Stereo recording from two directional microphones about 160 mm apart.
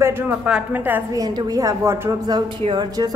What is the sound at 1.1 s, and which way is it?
A woman's voice, 25° right (ahead or behind).